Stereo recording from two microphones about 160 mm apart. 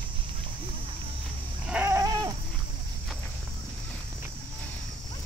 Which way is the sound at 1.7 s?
10° right (ahead or behind).